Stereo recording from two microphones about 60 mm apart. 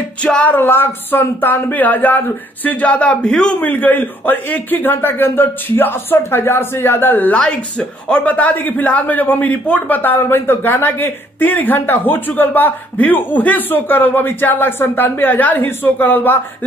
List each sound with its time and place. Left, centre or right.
0.2 s a sound: centre
0.5 s speech: left; by 3.5 s centre
3.6 s speech: left
7.3 s speech: centre; by 16.3 s left